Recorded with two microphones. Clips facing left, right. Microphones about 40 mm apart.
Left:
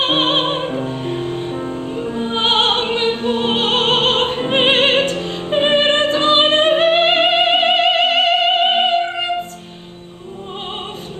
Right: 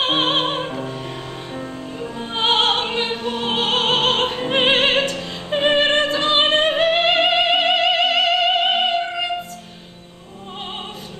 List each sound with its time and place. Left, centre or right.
0.0 s music: left